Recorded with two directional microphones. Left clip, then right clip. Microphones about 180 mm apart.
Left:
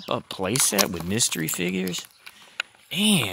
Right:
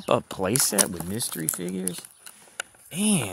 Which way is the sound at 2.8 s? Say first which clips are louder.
Left 5 dB; centre (ahead or behind).